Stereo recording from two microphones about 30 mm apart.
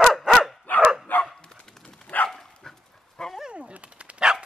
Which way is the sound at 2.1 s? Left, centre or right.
Left.